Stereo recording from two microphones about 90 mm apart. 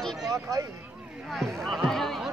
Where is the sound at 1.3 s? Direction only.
Centre (ahead or behind).